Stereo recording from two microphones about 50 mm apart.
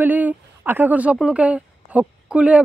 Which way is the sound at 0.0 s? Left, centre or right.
Right.